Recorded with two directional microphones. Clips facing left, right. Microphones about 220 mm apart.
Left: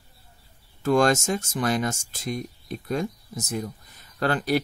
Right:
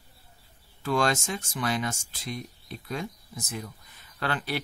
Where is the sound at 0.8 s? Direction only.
45° left (ahead or behind).